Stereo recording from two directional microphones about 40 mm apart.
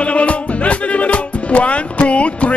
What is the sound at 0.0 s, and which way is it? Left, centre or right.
Music, left.